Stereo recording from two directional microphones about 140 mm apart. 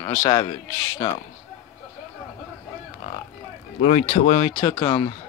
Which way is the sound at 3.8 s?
50° left (ahead or behind).